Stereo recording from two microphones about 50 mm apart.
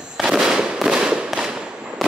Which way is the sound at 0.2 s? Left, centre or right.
Centre.